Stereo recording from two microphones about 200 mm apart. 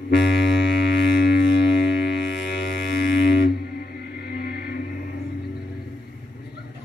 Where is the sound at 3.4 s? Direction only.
50° left (ahead or behind).